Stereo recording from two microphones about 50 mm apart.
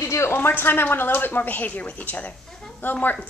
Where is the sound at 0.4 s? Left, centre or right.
Left.